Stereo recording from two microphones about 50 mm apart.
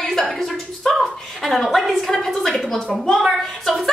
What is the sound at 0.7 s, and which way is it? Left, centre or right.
A woman's voice, centre.